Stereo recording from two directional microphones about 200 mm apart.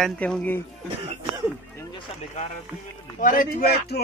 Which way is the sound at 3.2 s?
45° left (ahead or behind).